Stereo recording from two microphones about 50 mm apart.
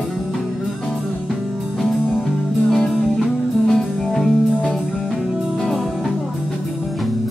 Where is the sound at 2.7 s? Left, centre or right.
Centre.